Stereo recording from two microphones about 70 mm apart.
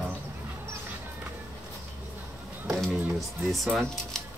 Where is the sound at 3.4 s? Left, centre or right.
Centre.